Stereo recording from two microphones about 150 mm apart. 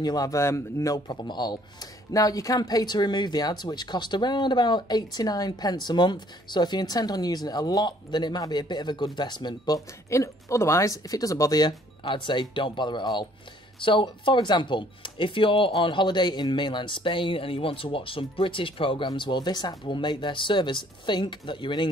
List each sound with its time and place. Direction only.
0.0 s speech: 25° left (ahead or behind)
10.0 s speech: 20° left (ahead or behind)